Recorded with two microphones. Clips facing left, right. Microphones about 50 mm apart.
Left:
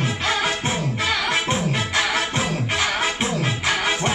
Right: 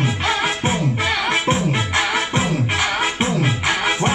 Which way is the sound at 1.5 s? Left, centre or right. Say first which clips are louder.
Right 3 dB; centre.